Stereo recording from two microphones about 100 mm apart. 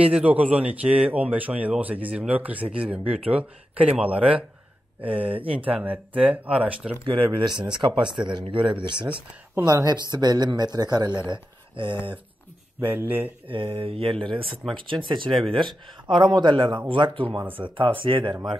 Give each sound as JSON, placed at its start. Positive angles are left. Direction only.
{"t": 0.0, "sound": "speech", "side_deg": -15}
{"t": 5.4, "sound": "speech", "side_deg": -65}
{"t": 5.7, "sound": "speech", "side_deg": -15}
{"t": 7.1, "sound": "speech", "side_deg": -55}
{"t": 11.3, "sound": "speech", "side_deg": -55}
{"t": 12.8, "sound": "speech", "side_deg": -20}
{"t": 13.5, "sound": "speech", "side_deg": -60}
{"t": 14.5, "sound": "speech", "side_deg": 0}
{"t": 14.9, "sound": "speech", "side_deg": -60}
{"t": 17.4, "sound": "speech", "side_deg": -20}
{"t": 17.6, "sound": "speech", "side_deg": -55}